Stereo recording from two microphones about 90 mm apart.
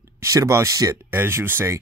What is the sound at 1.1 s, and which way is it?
Speech, 25° right (ahead or behind).